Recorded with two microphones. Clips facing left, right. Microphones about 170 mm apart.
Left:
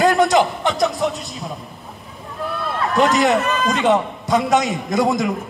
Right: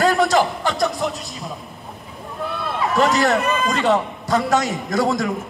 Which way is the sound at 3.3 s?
Centre (ahead or behind).